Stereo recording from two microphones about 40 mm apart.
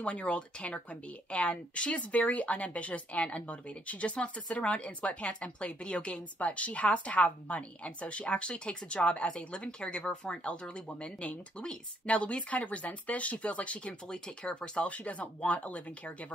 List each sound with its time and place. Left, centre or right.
0.0 s a woman's voice: left
14.4 s a woman's voice: left
14.9 s speech: left